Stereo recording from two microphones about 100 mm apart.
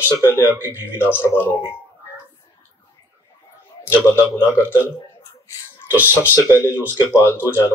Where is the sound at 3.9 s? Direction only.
25° left (ahead or behind).